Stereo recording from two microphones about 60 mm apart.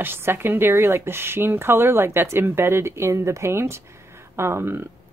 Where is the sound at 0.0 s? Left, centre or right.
Right.